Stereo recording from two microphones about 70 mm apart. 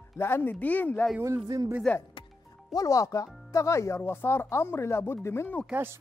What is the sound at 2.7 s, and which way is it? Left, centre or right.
Speech, left.